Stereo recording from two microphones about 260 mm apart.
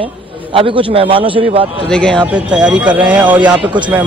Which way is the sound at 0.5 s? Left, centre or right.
Centre.